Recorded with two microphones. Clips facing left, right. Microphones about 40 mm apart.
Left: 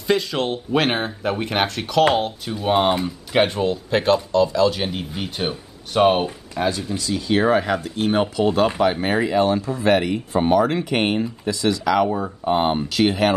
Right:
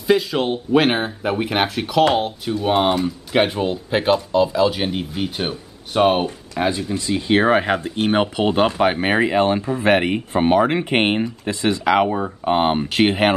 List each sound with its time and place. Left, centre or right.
0.0 s speech: centre
6.6 s speech: right